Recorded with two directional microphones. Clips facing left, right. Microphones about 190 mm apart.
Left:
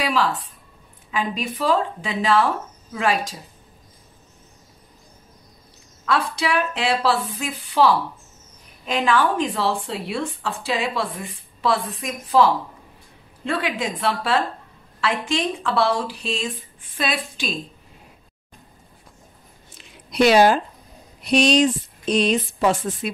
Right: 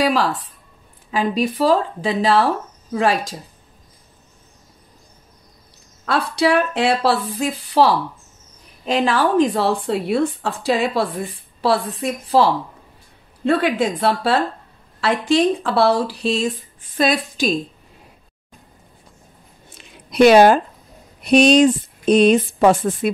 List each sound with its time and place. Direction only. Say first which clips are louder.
0.0 s a woman's voice: right 4 dB; 40° right (ahead or behind)
6.0 s a woman's voice: right 5 dB; 35° right (ahead or behind)
20.1 s speech: right 5 dB; 55° right (ahead or behind)